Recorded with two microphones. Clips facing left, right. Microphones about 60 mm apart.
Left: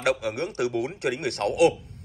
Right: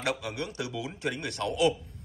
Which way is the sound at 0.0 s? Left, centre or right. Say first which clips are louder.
Left 7 dB; left.